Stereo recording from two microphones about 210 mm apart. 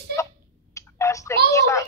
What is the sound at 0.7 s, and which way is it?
Clicking, 15° left (ahead or behind).